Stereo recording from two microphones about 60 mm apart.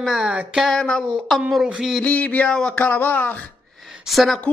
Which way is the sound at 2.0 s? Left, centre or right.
Left.